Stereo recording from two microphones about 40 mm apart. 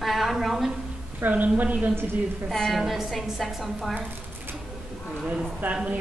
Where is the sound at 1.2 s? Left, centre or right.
Right.